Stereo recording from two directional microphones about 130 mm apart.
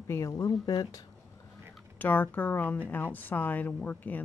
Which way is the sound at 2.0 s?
15° left (ahead or behind).